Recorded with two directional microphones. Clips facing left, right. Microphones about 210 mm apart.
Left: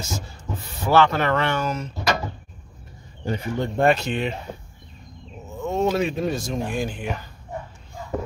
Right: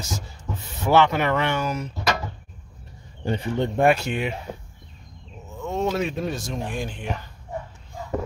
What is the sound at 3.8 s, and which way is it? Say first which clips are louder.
Speech: left 1 dB; 10° right (ahead or behind).